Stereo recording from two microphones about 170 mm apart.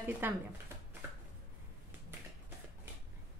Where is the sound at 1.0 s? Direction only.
10° right (ahead or behind).